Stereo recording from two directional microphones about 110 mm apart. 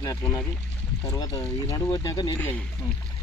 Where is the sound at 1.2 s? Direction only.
35° left (ahead or behind).